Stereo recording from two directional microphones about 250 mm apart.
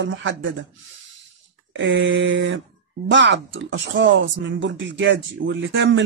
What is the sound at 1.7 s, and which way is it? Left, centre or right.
Speech, right.